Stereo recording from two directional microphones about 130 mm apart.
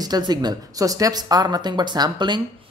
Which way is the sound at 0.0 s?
30° right (ahead or behind).